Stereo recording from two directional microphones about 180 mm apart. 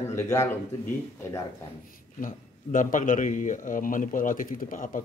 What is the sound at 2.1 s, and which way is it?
A man's voice, 45° left (ahead or behind).